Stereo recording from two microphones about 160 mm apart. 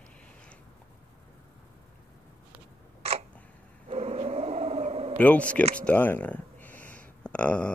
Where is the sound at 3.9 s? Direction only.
40° right (ahead or behind).